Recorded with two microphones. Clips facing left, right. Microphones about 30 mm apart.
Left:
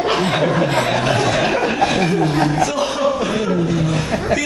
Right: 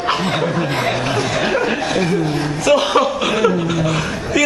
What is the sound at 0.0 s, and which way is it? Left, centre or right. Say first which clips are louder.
Speech: left 1 dB; centre.